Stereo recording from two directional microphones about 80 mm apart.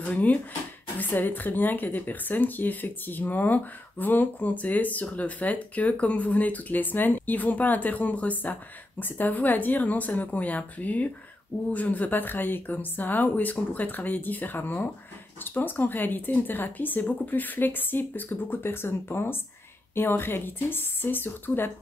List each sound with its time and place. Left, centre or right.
0.1 s speech: centre